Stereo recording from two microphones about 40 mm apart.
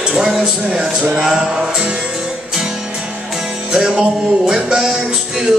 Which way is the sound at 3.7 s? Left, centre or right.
Centre.